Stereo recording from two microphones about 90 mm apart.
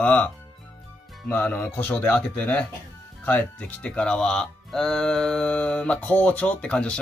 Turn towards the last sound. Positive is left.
turn(degrees=10)  # may be behind; listen again after turning